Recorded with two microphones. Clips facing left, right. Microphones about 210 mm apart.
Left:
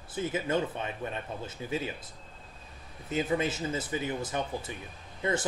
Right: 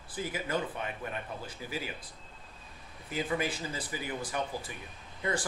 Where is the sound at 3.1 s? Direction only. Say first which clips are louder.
Left 4 dB; 25° left (ahead or behind).